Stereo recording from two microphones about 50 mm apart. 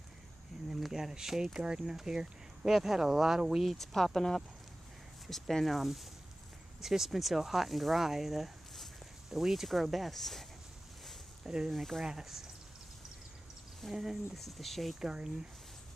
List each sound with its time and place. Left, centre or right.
0.7 s speech: centre
3.6 s speech: centre
11.4 s speech: centre
11.7 s speech: centre
12.0 s speech: centre
13.8 s speech: centre
15.0 s speech: centre